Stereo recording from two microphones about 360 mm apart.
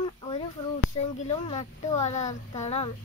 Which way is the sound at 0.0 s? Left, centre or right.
Centre.